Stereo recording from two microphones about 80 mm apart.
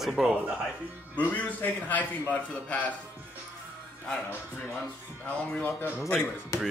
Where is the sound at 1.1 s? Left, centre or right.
Centre.